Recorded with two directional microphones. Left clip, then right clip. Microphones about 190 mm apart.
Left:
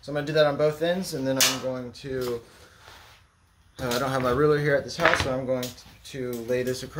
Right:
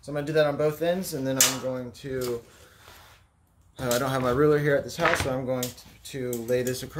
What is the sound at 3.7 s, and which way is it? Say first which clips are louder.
Speech: even; 30° right (ahead or behind).